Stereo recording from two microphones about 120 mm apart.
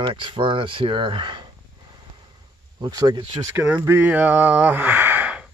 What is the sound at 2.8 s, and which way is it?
Speech, 35° right (ahead or behind).